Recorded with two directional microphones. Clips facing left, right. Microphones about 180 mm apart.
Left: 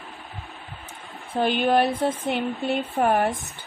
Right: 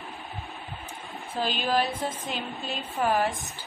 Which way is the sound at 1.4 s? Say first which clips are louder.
Left 6 dB; 60° left (ahead or behind).